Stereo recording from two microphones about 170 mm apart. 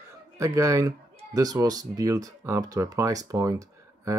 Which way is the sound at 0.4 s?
20° right (ahead or behind).